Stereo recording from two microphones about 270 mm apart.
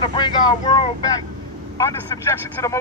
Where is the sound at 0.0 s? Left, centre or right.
Centre.